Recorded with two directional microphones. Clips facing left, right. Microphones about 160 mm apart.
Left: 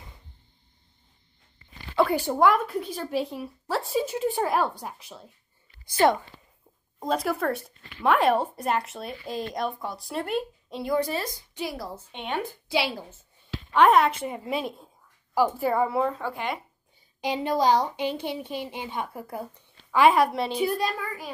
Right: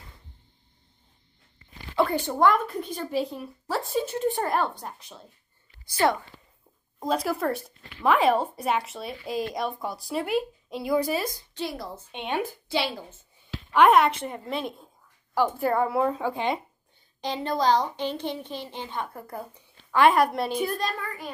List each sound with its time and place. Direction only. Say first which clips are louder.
2.0 s speech: left 1 dB; 10° left (ahead or behind)
5.9 s speech: left 3 dB; 20° left (ahead or behind)
7.0 s speech: even; centre (ahead or behind)
11.3 s a woman's voice: even; 10° left (ahead or behind)
12.1 s speech: right 2 dB; 15° right (ahead or behind)
12.6 s a woman's voice: left 1 dB; 5° left (ahead or behind)
16.1 s speech: right 3 dB; 15° right (ahead or behind)
17.2 s a woman's voice: left 2 dB; 10° left (ahead or behind)